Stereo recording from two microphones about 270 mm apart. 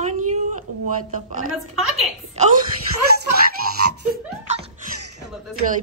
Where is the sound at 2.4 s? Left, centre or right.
Right.